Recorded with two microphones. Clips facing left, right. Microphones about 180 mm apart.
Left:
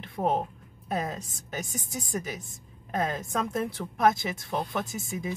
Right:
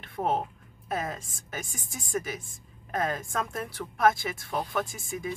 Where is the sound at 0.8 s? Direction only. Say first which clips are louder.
Left 1 dB; 20° left (ahead or behind).